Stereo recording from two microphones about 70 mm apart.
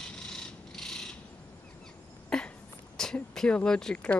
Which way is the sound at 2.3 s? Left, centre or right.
Centre.